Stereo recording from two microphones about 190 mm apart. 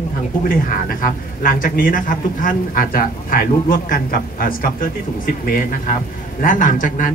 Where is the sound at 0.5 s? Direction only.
50° left (ahead or behind).